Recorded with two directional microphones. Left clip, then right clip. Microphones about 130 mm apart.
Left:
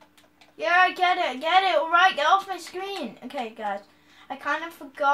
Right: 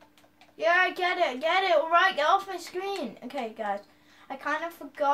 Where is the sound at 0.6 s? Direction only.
15° left (ahead or behind).